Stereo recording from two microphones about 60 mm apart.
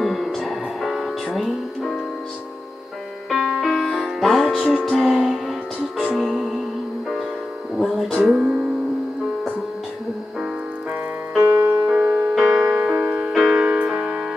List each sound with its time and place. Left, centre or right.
0.0 s music: centre
3.3 s music: centre
7.7 s music: centre
11.4 s music: right
12.4 s music: centre
12.7 s music: centre